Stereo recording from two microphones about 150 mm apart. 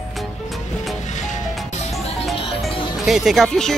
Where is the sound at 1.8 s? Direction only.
45° left (ahead or behind).